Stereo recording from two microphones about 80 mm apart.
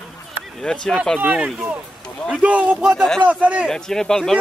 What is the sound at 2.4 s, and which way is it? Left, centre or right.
A man's voice, centre.